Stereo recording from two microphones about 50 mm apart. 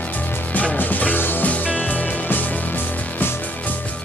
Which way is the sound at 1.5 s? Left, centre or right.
Left.